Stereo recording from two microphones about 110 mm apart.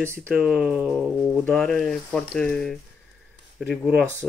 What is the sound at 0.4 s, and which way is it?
Speech, 5° right (ahead or behind).